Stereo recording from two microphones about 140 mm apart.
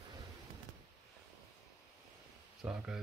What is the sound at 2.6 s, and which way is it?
Speech, 5° right (ahead or behind).